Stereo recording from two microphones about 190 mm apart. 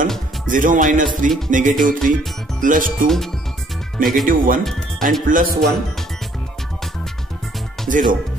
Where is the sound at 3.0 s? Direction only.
Centre (ahead or behind).